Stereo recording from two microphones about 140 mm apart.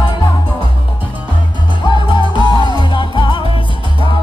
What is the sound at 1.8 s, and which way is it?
Music, 35° left (ahead or behind).